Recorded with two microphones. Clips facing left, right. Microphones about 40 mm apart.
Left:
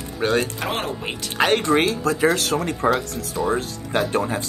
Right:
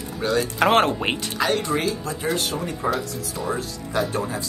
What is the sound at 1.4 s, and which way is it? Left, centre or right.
Speech, left.